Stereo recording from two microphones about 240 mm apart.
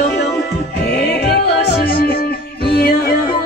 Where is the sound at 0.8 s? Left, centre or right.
Left.